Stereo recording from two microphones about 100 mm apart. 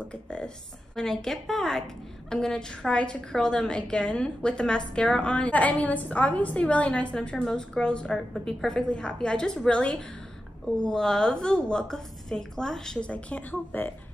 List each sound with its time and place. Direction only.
0.1 s a woman's voice: 10° left (ahead or behind)